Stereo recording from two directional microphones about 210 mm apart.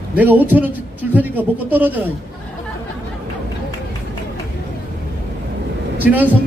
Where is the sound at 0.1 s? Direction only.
10° right (ahead or behind).